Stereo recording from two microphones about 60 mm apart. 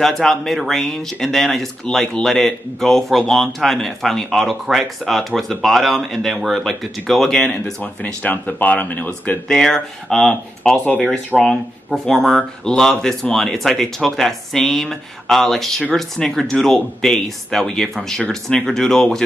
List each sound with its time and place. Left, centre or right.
0.0 s speech: centre
7.8 s speech: left
9.5 s speech: centre